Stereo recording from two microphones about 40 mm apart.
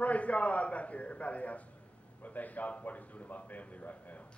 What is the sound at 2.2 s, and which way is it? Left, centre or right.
Speech, left.